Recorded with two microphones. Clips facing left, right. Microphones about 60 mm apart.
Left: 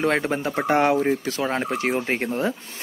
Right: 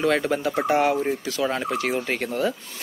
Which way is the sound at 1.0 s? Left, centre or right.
Left.